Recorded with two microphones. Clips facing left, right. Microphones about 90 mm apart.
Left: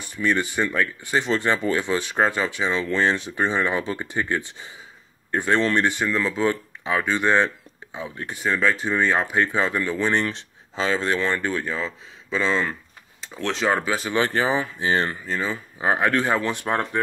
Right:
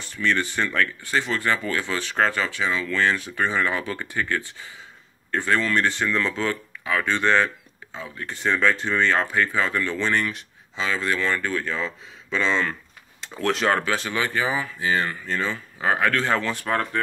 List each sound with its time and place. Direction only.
0.0 s speech: 15° left (ahead or behind)
6.4 s speech: 20° left (ahead or behind)
8.4 s speech: 5° left (ahead or behind)
10.2 s speech: 35° left (ahead or behind)
11.7 s speech: 5° left (ahead or behind)
13.4 s speech: 5° right (ahead or behind)
13.7 s speech: 10° left (ahead or behind)
14.1 s speech: 35° left (ahead or behind)
15.2 s speech: 10° left (ahead or behind)